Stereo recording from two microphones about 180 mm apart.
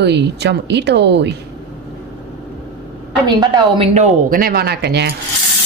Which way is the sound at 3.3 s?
30° right (ahead or behind).